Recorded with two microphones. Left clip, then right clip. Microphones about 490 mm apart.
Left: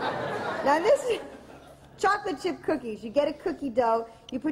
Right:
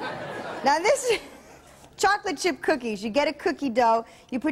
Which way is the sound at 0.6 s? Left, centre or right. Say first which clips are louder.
Right 1 dB; right.